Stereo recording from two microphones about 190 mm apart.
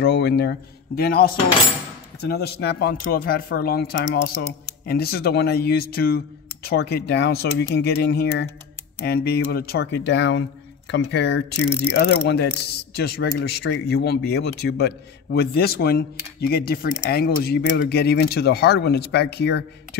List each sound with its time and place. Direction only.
0.0 s speech: 55° left (ahead or behind)